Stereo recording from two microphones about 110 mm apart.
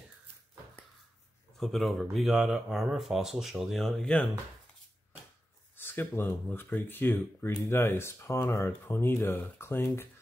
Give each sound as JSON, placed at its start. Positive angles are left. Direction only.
{"t": 1.6, "sound": "speech", "side_deg": 0}
{"t": 5.8, "sound": "speech", "side_deg": 20}